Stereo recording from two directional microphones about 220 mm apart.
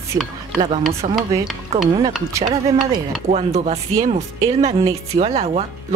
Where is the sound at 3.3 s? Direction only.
30° right (ahead or behind).